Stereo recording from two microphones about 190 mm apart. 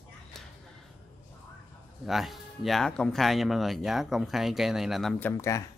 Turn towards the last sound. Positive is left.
turn(degrees=15)  # may be behind; listen again after turning